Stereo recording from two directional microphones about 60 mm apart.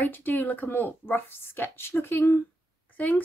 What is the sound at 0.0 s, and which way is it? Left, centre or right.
Speech, left.